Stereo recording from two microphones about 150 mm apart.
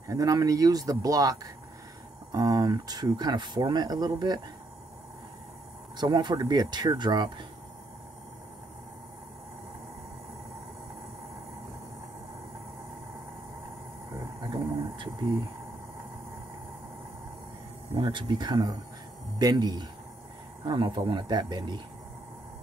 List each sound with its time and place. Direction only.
0.1 s speech: 25° right (ahead or behind)
5.9 s speech: 30° right (ahead or behind)
14.4 s a sound: 30° right (ahead or behind)
17.9 s speech: 30° right (ahead or behind)